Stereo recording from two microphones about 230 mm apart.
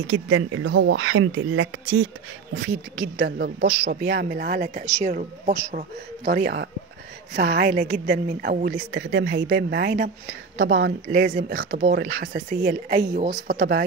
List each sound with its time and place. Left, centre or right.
0.1 s speech: right
2.5 s speech: right
8.9 s speech: right
12.4 s speech: right